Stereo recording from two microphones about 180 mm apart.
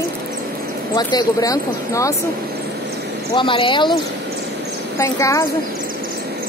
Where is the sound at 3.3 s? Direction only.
30° left (ahead or behind).